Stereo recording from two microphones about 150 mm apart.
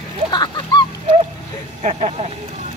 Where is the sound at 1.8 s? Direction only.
45° right (ahead or behind).